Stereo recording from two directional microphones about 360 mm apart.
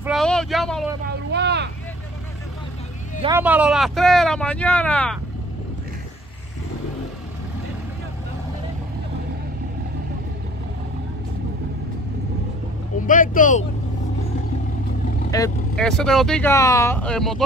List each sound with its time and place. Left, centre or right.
0.0 s vehicle: centre
1.3 s vehicle: right
3.2 s speech: centre
13.0 s speech: left
15.3 s speech: centre